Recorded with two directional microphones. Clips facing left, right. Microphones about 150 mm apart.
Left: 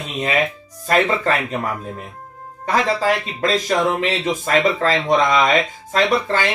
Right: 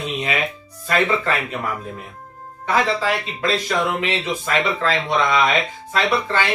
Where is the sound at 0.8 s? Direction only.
40° left (ahead or behind).